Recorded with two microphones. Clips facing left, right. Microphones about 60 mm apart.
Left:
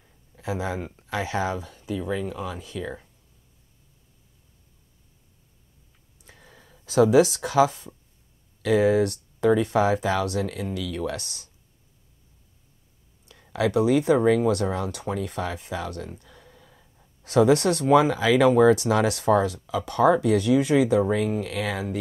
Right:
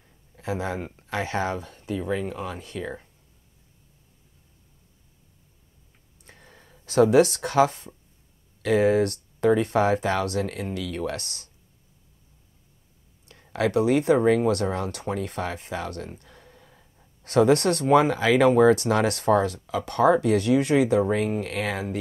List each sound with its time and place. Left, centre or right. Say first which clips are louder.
0.4 s speech: even; centre
0.8 s speech: even; centre
1.1 s speech: even; centre
1.4 s speech: even; right
2.0 s speech: right 1 dB; right
2.8 s speech: even; centre
6.3 s a sound: even; centre
6.9 s speech: even; right
13.5 s speech: even; right
14.5 s speech: even; right
15.0 s speech: even; right
16.4 s gasp: even; centre
17.9 s speech: even; right
18.9 s speech: even; right